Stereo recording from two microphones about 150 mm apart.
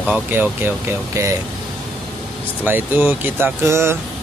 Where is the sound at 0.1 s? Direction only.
10° right (ahead or behind).